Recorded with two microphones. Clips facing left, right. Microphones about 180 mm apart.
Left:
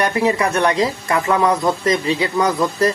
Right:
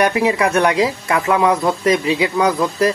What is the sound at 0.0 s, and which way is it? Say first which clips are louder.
Speech: right 2 dB; 15° right (ahead or behind).